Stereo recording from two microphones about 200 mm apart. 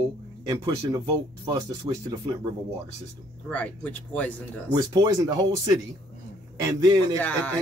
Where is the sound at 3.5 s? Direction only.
10° left (ahead or behind).